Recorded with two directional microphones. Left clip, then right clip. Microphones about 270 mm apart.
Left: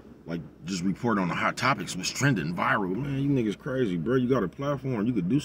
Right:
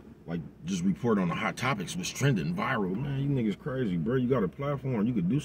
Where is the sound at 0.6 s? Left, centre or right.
Left.